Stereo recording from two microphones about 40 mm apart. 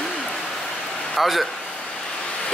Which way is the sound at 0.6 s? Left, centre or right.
Centre.